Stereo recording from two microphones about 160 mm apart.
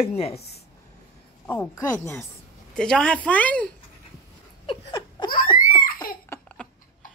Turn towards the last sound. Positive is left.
turn(degrees=30)  # may be behind; listen again after turning